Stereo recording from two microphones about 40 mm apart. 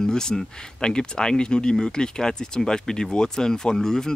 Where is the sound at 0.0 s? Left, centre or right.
Centre.